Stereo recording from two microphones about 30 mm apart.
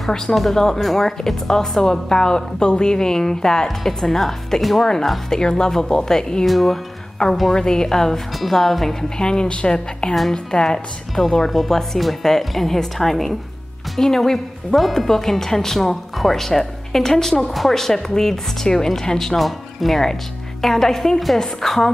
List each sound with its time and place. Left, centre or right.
0.1 s a woman's voice: centre
5.3 s a woman's voice: left
6.4 s speech: centre
7.2 s a woman's voice: left; by 8.9 s centre
9.2 s a woman's voice: left
11.6 s speech: centre